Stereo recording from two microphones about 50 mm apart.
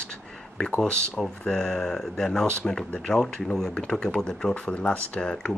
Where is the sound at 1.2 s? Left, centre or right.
Centre.